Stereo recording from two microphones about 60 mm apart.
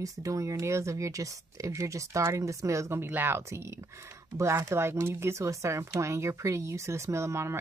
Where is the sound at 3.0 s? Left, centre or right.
Right.